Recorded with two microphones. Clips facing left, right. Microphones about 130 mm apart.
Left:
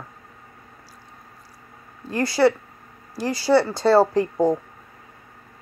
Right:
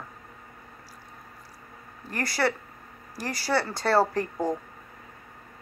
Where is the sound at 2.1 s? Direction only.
20° left (ahead or behind).